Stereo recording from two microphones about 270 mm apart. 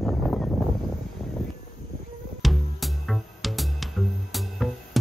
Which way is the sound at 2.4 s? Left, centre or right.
Centre.